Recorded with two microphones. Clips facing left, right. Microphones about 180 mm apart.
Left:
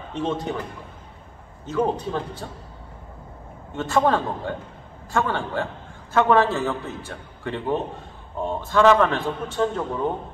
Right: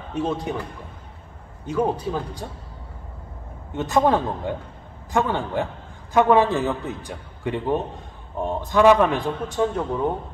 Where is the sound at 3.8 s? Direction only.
15° right (ahead or behind).